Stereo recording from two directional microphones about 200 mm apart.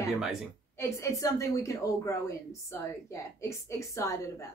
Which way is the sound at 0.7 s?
15° left (ahead or behind).